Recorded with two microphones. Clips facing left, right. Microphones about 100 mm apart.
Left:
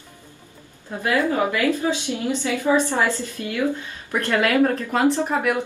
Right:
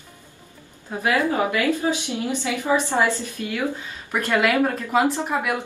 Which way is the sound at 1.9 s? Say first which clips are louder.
Left 1 dB; 15° right (ahead or behind).